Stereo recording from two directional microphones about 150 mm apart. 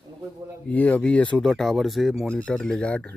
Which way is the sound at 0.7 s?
10° left (ahead or behind).